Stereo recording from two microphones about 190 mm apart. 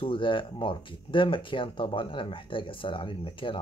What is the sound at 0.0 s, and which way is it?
Speech, 25° left (ahead or behind).